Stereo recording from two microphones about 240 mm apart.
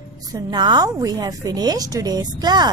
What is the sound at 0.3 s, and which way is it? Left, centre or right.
A woman's voice, centre.